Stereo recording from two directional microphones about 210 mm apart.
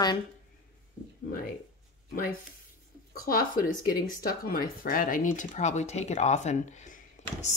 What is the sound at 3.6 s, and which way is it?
Speech, 45° left (ahead or behind).